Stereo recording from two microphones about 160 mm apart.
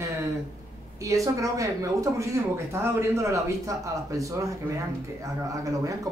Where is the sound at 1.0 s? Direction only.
20° right (ahead or behind).